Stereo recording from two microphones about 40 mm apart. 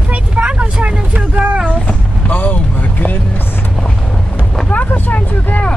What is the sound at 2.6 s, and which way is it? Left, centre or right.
Speech, left.